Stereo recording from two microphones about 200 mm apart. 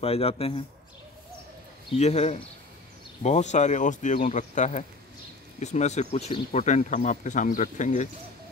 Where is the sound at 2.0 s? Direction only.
35° left (ahead or behind).